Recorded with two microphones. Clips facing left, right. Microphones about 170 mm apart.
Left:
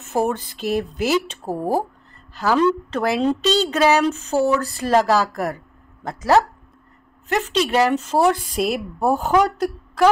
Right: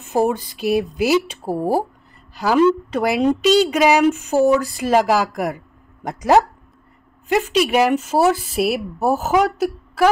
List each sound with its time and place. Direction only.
0.0 s a woman's voice: 10° right (ahead or behind)